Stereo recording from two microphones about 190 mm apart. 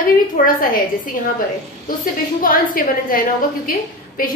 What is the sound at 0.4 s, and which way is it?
Speech, 45° left (ahead or behind).